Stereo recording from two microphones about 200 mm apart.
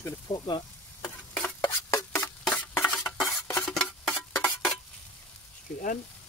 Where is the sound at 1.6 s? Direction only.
15° left (ahead or behind).